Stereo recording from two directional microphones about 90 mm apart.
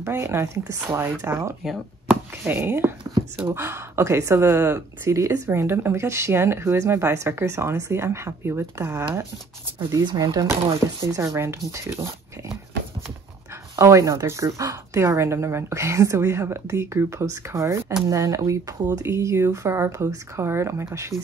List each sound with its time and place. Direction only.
0.0 s speech: 30° right (ahead or behind)
10.0 s speech: 50° right (ahead or behind)
11.0 s a woman's voice: 35° right (ahead or behind)
13.7 s a woman's voice: 35° right (ahead or behind)